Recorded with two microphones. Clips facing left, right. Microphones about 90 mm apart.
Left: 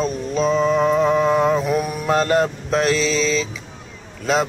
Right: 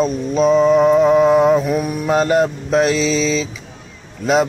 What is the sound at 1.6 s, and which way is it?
Mantra, centre (ahead or behind).